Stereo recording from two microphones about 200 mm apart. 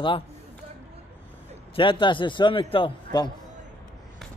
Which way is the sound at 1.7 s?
25° left (ahead or behind).